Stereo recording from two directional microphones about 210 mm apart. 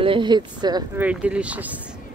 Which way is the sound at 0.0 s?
25° right (ahead or behind).